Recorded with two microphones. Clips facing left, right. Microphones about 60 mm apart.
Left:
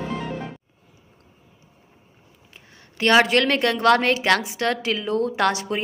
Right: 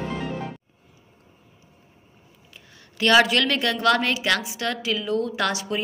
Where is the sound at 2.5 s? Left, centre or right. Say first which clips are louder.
Left 1 dB; left.